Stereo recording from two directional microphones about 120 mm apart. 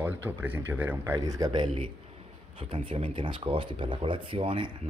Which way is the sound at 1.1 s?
30° right (ahead or behind).